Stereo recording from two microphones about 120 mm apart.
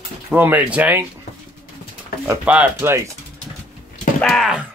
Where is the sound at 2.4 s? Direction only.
10° right (ahead or behind).